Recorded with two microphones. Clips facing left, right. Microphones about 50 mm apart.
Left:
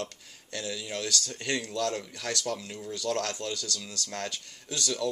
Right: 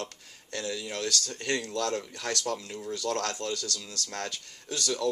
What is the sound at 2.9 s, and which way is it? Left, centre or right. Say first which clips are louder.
Speech: even; right.